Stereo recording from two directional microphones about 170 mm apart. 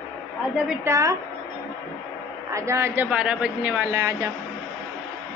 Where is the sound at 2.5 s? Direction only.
15° right (ahead or behind).